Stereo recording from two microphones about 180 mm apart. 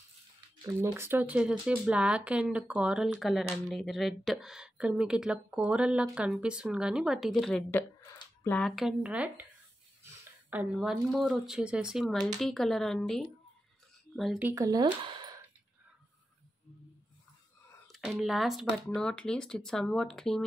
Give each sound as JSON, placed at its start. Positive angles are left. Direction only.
{"t": 0.7, "sound": "speech", "side_deg": -15}
{"t": 8.0, "sound": "a sound", "side_deg": 20}
{"t": 8.5, "sound": "speech", "side_deg": 0}
{"t": 10.5, "sound": "speech", "side_deg": -5}
{"t": 14.4, "sound": "speech", "side_deg": -15}
{"t": 17.8, "sound": "a sound", "side_deg": 0}
{"t": 18.2, "sound": "speech", "side_deg": 0}